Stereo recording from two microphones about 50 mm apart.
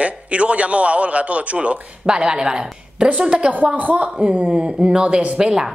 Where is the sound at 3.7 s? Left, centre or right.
Right.